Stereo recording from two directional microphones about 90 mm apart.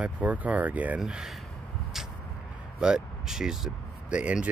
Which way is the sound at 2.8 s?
5° right (ahead or behind).